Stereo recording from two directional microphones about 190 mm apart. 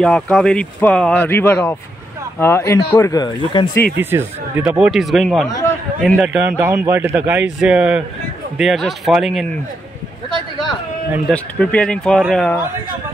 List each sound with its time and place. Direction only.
0.0 s speech: 5° left (ahead or behind); by 3.8 s 20° left (ahead or behind)
4.0 s a man's voice: 10° right (ahead or behind)
11.2 s speech: 5° left (ahead or behind)